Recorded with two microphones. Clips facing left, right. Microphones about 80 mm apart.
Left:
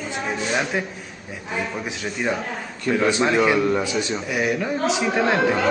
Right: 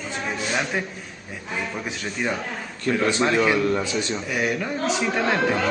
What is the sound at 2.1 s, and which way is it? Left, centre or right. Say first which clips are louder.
A man's voice: left 2 dB; centre.